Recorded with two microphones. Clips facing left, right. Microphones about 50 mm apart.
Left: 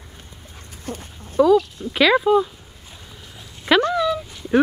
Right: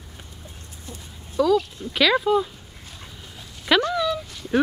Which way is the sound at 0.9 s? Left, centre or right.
Left.